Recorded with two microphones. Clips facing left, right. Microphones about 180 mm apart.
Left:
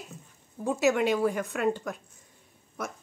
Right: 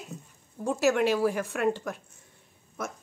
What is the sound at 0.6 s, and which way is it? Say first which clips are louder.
Speech: even; centre (ahead or behind).